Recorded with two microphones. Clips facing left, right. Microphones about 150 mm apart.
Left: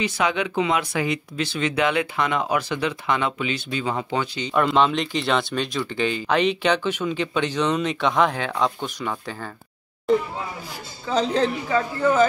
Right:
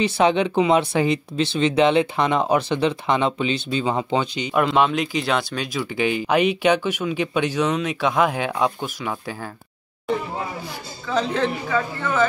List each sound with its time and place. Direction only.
0.0 s speech: 30° right (ahead or behind)
4.6 s speech: 5° right (ahead or behind)
11.1 s a woman's voice: 35° left (ahead or behind)